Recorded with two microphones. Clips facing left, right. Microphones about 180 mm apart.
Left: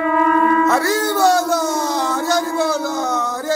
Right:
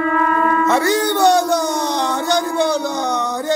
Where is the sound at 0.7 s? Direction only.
Centre (ahead or behind).